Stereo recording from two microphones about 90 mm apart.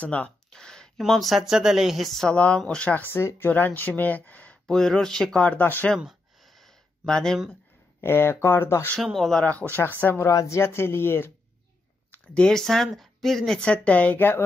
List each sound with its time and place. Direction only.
0.0 s speech: 15° left (ahead or behind)
3.1 s speech: 25° left (ahead or behind)
5.9 s a sound: centre (ahead or behind)
8.0 s speech: 25° left (ahead or behind)
9.0 s speech: centre (ahead or behind); by 10.2 s 20° left (ahead or behind)
10.2 s speech: 35° left (ahead or behind)
12.1 s speech: 10° left (ahead or behind)
13.7 s speech: 15° left (ahead or behind)